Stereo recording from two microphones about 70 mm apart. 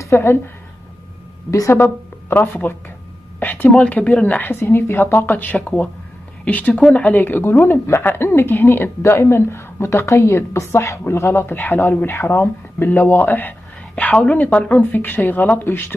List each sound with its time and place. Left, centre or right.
0.0 s a woman's voice: left
1.5 s a woman's voice: left
1.8 s speech: left
3.3 s a sound: left
3.8 s a woman's voice: centre
5.6 s a woman's voice: centre